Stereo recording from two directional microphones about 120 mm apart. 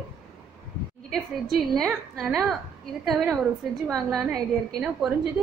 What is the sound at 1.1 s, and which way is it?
A woman's voice, centre (ahead or behind).